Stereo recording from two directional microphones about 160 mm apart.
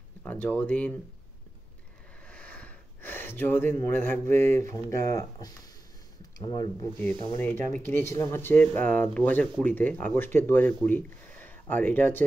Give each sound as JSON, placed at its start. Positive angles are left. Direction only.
{"t": 0.2, "sound": "speech", "side_deg": 10}
{"t": 2.2, "sound": "speech", "side_deg": 10}